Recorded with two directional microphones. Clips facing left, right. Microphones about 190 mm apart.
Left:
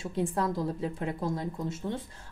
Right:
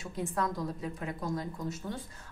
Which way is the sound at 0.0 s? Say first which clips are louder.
Left 4 dB; 25° left (ahead or behind).